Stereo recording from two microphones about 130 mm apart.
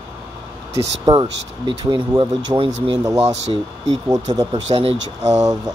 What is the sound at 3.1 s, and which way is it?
Speech, 55° right (ahead or behind).